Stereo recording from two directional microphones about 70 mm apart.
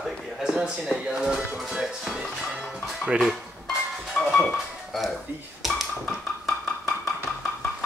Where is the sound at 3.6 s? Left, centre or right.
Centre.